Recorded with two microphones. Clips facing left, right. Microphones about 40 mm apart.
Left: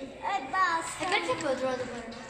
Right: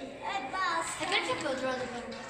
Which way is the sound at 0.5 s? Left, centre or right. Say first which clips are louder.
Left 5 dB; left.